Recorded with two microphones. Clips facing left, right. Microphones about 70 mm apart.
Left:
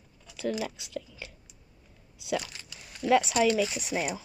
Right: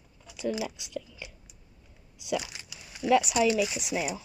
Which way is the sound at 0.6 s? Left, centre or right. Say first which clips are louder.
Even; left.